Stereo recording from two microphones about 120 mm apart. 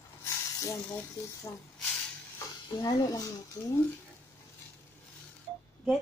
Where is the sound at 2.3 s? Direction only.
30° left (ahead or behind).